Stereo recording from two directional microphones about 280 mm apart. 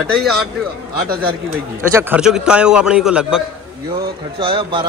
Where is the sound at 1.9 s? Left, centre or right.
Centre.